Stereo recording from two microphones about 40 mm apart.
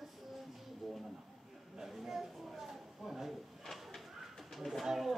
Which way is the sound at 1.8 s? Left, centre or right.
Centre.